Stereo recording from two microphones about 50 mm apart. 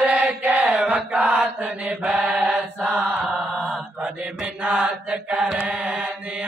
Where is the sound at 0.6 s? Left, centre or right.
Right.